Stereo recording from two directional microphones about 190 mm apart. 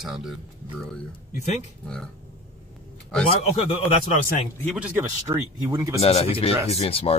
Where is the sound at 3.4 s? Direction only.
30° left (ahead or behind).